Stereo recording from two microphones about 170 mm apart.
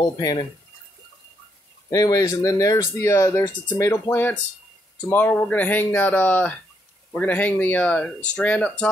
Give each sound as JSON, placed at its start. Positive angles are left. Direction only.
{"t": 0.0, "sound": "speech", "side_deg": 25}
{"t": 1.9, "sound": "speech", "side_deg": 20}